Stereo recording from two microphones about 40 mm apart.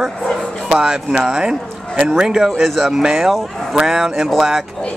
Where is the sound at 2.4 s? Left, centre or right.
Centre.